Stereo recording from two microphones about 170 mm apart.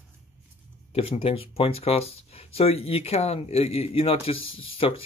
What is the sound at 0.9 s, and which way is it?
Speech, 35° left (ahead or behind).